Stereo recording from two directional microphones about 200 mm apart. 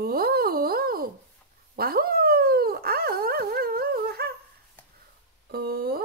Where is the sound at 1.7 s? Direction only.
50° right (ahead or behind).